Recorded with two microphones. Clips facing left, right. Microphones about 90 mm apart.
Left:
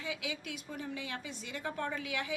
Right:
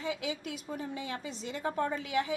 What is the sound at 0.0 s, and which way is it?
A woman's voice, 35° right (ahead or behind).